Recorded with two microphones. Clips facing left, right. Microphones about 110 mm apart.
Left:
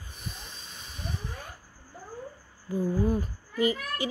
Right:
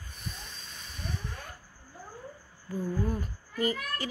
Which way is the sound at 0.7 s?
15° left (ahead or behind).